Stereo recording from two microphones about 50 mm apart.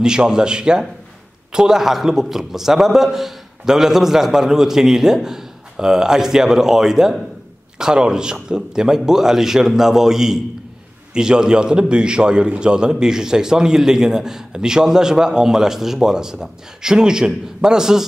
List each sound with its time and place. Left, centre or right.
0.0 s a man's voice: centre